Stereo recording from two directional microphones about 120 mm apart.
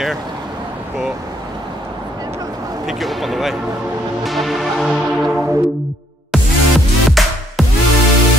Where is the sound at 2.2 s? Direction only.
30° right (ahead or behind).